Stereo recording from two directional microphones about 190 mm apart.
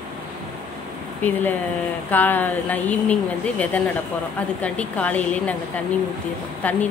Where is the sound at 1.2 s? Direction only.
10° left (ahead or behind).